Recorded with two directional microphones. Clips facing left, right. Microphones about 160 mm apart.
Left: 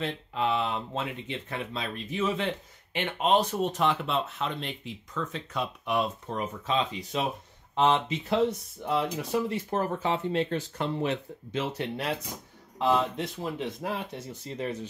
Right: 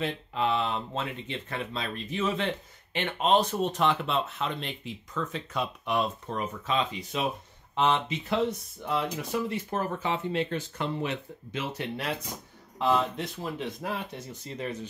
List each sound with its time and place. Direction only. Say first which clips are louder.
0.3 s speech: even; 5° left (ahead or behind)
5.9 s speech: even; 15° left (ahead or behind)